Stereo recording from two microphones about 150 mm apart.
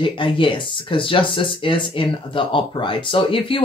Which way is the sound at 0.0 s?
35° left (ahead or behind).